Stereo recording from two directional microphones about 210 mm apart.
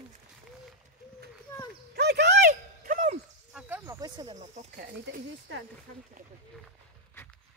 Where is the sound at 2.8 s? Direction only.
40° right (ahead or behind).